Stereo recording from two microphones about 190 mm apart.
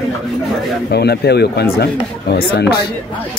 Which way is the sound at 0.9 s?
60° left (ahead or behind).